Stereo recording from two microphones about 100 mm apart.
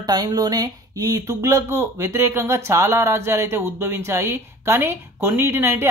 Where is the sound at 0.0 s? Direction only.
40° right (ahead or behind).